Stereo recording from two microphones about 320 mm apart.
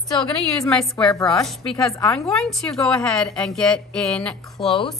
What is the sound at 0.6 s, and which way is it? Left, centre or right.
A woman's voice, centre.